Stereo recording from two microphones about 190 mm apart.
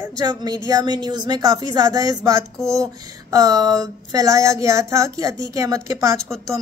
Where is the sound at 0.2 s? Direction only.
20° right (ahead or behind).